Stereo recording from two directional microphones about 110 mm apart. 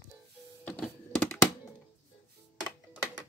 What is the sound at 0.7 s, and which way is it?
Printer, 10° left (ahead or behind).